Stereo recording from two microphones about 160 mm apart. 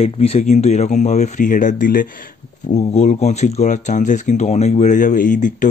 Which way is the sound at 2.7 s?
45° left (ahead or behind).